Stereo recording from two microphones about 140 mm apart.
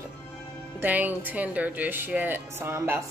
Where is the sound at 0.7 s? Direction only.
10° right (ahead or behind).